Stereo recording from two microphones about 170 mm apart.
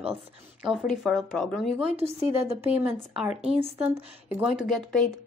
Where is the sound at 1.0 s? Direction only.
Centre (ahead or behind).